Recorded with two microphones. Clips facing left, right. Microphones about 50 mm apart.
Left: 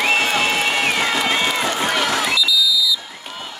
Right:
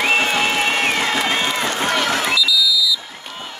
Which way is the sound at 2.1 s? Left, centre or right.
Right.